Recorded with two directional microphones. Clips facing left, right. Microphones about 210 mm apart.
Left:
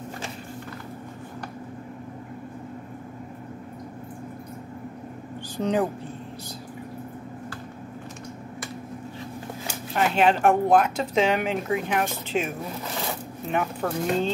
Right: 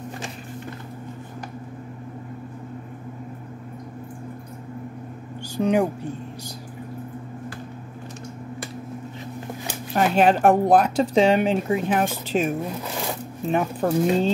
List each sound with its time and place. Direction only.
5.6 s speech: 10° right (ahead or behind)
9.9 s speech: 40° right (ahead or behind)
13.5 s speech: 35° right (ahead or behind)